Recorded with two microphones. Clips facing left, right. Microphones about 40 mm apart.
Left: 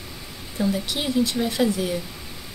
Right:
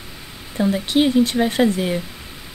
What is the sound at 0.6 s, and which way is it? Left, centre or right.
Speech, right.